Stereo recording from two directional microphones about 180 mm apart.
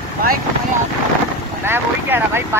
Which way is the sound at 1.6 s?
10° right (ahead or behind).